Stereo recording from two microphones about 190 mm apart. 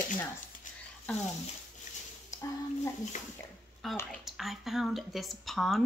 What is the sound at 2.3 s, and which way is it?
Speech, 15° left (ahead or behind).